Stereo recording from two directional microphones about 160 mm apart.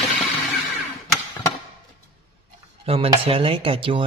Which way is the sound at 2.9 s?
35° right (ahead or behind).